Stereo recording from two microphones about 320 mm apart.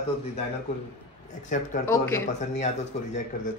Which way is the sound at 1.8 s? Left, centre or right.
Centre.